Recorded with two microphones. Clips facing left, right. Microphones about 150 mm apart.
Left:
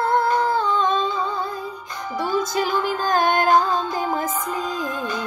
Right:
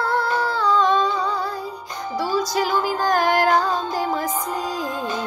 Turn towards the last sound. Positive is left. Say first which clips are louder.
# even
turn(degrees=20)  # may be behind; listen again after turning